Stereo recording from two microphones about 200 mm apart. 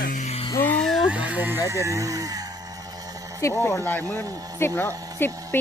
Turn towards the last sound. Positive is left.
turn(degrees=10)  # may be behind; listen again after turning